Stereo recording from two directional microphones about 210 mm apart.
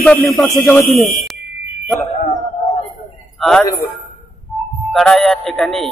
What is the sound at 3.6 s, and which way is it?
Speech, 15° left (ahead or behind).